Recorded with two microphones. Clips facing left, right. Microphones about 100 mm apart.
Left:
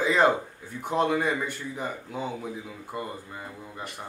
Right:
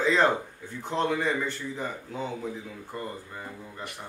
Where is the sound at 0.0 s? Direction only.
10° left (ahead or behind).